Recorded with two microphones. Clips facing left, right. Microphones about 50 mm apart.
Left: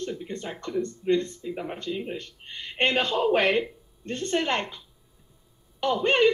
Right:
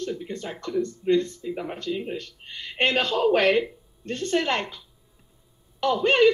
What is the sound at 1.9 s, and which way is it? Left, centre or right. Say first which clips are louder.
Speech: right 3 dB; centre.